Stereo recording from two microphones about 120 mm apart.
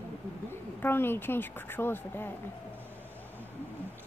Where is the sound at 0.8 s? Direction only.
20° left (ahead or behind).